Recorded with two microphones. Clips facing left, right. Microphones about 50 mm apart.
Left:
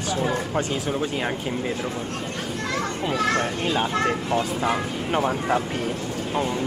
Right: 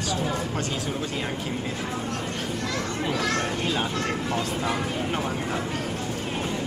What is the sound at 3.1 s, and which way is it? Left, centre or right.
Speech, centre.